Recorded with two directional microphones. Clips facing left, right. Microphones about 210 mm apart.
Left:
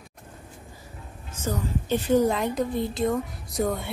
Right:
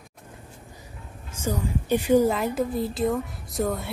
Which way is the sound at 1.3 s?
10° right (ahead or behind).